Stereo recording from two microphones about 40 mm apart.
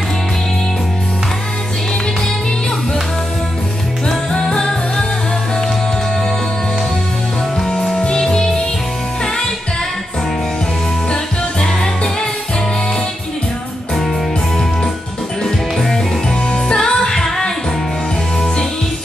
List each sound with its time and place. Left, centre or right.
4.3 s music: centre
7.5 s music: centre
11.6 s music: centre
15.4 s music: centre